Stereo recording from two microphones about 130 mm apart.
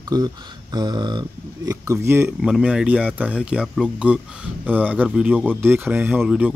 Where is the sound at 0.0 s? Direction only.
30° right (ahead or behind).